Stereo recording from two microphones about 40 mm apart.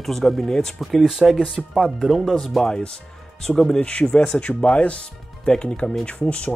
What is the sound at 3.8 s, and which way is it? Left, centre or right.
Speech, left.